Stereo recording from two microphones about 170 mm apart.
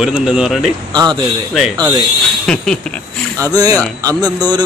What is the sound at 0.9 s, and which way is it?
Speech, 25° right (ahead or behind).